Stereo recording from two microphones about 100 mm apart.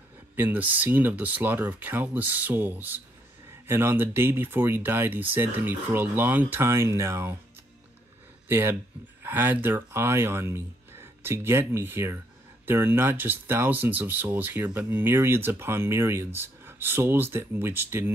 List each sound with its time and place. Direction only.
0.4 s speech: 15° right (ahead or behind)
8.5 s speech: 20° right (ahead or behind)